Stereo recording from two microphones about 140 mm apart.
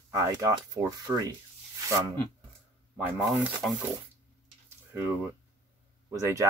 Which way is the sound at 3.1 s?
Centre (ahead or behind).